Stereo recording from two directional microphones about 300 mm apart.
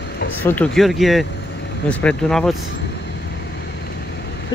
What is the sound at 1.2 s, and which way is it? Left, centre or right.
Vehicle, left.